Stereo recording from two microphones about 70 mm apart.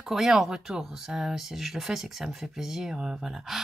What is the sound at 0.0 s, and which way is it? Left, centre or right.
Speech, centre.